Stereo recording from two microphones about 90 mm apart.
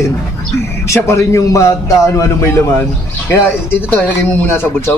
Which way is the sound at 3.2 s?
20° left (ahead or behind).